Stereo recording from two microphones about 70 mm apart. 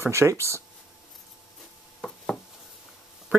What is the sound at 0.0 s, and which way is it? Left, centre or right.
Speech, right.